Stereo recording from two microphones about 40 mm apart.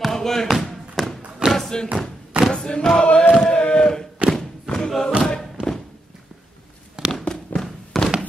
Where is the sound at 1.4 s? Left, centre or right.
Right.